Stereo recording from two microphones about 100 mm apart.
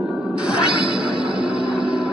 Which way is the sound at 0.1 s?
10° right (ahead or behind).